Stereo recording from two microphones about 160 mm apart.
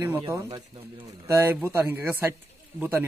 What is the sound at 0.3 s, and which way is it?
Speech, 25° right (ahead or behind).